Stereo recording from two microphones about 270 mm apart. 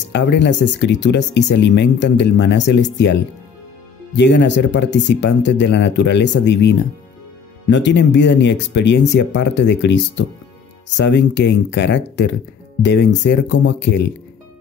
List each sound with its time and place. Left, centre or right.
0.1 s speech: left